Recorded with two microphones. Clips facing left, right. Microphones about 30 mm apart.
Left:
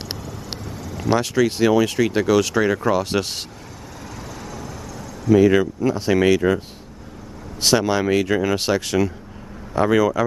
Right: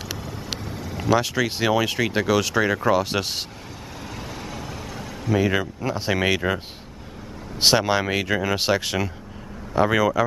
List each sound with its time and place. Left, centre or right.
0.7 s vehicle: right
1.2 s speech: centre
4.4 s vehicle: right
5.3 s speech: centre
7.6 s speech: centre